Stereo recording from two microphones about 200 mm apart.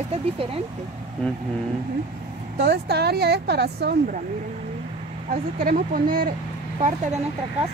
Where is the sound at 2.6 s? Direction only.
55° right (ahead or behind).